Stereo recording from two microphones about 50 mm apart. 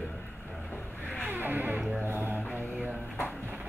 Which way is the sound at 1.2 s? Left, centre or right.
Right.